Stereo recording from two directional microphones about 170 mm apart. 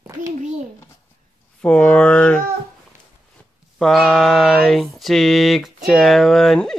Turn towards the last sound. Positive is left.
turn(degrees=0)  # may be behind; listen again after turning